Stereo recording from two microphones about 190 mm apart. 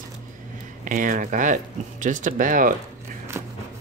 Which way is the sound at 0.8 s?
45° right (ahead or behind).